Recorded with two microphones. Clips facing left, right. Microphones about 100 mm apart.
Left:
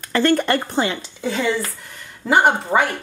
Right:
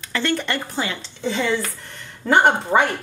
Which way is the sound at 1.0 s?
5° left (ahead or behind).